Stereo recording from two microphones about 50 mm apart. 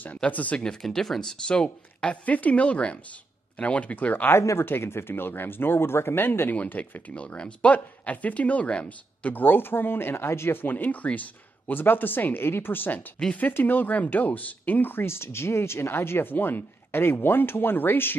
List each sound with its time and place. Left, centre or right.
0.3 s speech: left
0.8 s speech: centre
2.2 s speech: left
4.6 s speech: left
6.5 s speech: left
7.2 s speech: left
10.6 s speech: left
11.7 s speech: left